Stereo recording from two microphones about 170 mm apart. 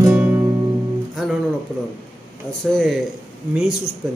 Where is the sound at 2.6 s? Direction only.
Centre (ahead or behind).